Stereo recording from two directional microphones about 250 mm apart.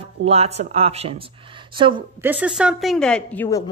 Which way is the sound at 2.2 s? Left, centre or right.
Centre.